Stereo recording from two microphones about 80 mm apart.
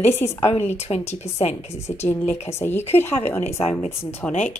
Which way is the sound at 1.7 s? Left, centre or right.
Left.